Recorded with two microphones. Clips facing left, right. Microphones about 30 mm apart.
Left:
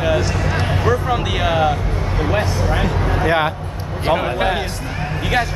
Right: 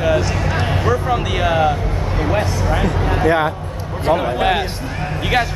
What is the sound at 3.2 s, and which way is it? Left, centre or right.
A man's voice, left.